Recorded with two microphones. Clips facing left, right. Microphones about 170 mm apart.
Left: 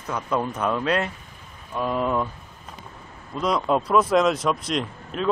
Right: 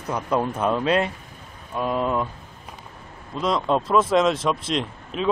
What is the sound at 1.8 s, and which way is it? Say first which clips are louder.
Speech: even; 5° right (ahead or behind).